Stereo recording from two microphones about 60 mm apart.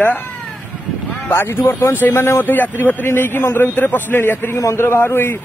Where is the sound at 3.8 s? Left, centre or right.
Left.